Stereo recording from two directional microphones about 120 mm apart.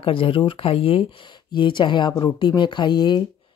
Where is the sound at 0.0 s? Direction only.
45° left (ahead or behind).